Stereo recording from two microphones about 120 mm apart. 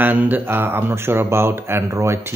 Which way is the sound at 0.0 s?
15° right (ahead or behind).